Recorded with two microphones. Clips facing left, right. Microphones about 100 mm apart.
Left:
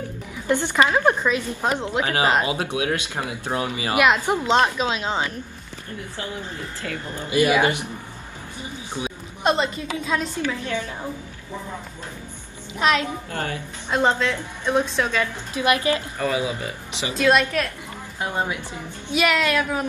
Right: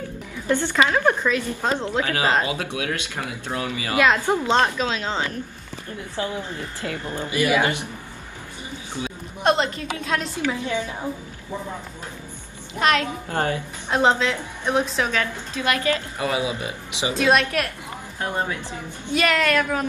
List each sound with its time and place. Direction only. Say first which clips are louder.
0.5 s a woman's voice: left 1 dB; 15° left (ahead or behind)
6.1 s speech: right 5 dB; 20° right (ahead or behind)
7.2 s a woman's voice: left 2 dB; 20° left (ahead or behind)
9.4 s a woman's voice: right 1 dB; 5° left (ahead or behind)
12.7 s a woman's voice: even; 5° left (ahead or behind)
13.3 s a woman's voice: right 9 dB; 35° right (ahead or behind)
13.8 s a woman's voice: right 1 dB; 10° right (ahead or behind)
15.5 s a woman's voice: left 2 dB; 20° left (ahead or behind)
16.2 s a woman's voice: even; 15° right (ahead or behind)
17.1 s a woman's voice: left 1 dB; centre (ahead or behind)
18.2 s a woman's voice: even; 15° left (ahead or behind)